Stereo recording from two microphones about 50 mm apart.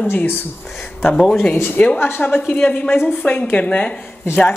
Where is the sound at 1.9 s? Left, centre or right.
Left.